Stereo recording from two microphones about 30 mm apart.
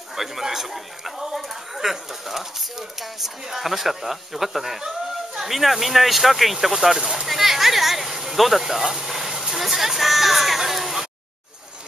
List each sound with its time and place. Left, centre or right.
0.1 s speech: centre
7.2 s a sound: centre
9.0 s speech: centre